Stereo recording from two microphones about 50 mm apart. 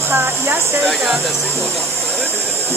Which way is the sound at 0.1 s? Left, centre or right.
Right.